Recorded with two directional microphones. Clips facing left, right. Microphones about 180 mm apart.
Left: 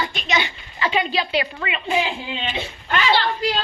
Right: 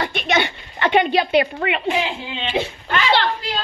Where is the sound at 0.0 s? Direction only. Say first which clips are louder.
Right 4 dB; 60° right (ahead or behind).